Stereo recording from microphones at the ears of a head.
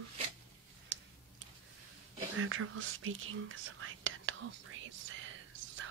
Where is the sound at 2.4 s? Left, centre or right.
Right.